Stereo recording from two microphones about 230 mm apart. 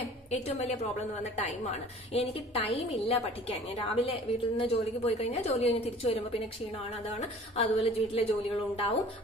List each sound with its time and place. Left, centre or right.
0.3 s a woman's voice: left
7.2 s a woman's voice: left